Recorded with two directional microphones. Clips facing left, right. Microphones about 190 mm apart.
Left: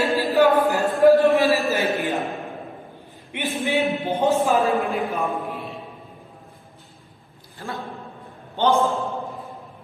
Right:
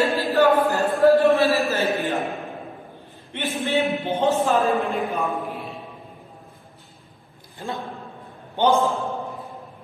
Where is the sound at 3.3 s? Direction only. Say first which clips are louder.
Even; 15° left (ahead or behind).